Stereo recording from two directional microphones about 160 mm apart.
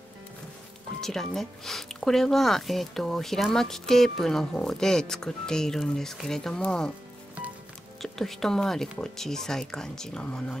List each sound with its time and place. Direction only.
1.0 s speech: centre (ahead or behind)
8.0 s speech: centre (ahead or behind)